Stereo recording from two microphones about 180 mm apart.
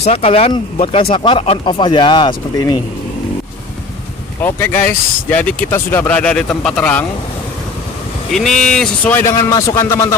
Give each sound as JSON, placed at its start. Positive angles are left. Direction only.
{"t": 0.0, "sound": "speech", "side_deg": 35}
{"t": 4.4, "sound": "speech", "side_deg": 10}
{"t": 8.3, "sound": "speech", "side_deg": 0}
{"t": 9.5, "sound": "speech", "side_deg": 20}